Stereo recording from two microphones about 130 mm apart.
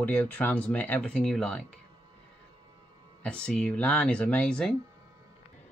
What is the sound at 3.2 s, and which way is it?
Speech, 5° left (ahead or behind).